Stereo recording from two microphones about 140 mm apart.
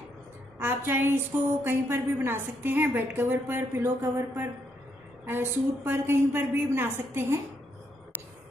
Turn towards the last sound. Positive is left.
turn(degrees=-15)  # may be behind; listen again after turning